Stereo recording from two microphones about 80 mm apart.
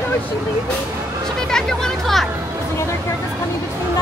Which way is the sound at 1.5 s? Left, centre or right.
Centre.